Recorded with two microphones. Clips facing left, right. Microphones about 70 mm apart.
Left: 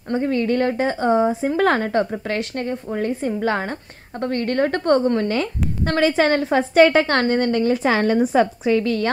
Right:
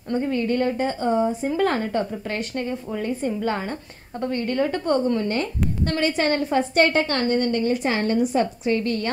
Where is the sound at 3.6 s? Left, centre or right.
Left.